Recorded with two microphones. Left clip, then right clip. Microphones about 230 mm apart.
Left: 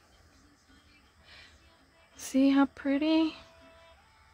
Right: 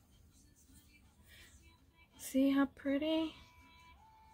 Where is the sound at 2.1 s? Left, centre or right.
Left.